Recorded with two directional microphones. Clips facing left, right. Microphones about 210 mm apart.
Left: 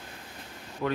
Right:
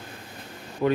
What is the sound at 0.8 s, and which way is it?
Speech, 20° right (ahead or behind).